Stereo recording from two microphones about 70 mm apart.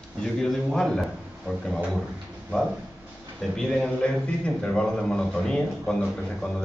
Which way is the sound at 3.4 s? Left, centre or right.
Centre.